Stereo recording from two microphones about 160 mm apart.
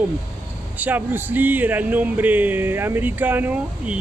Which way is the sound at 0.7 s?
10° right (ahead or behind).